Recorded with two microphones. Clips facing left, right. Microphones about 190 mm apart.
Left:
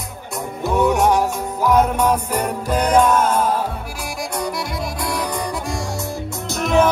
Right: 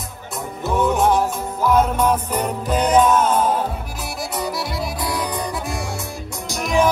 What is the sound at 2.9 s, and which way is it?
Music, 5° right (ahead or behind).